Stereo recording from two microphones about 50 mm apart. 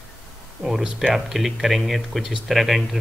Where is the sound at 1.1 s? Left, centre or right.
Centre.